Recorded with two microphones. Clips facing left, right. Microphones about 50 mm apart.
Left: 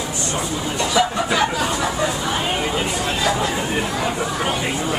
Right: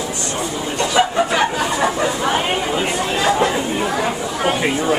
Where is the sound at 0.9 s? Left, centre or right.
Right.